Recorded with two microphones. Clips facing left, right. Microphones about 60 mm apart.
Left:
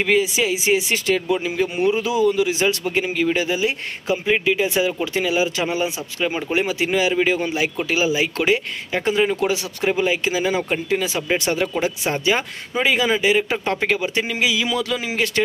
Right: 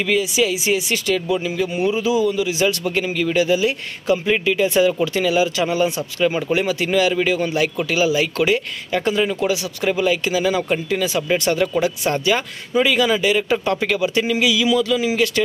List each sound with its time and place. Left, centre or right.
0.0 s speech: left
2.5 s speech: left
14.7 s speech: left
15.1 s speech: left